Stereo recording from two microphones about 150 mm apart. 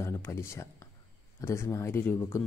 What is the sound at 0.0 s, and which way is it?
Speech, 15° left (ahead or behind).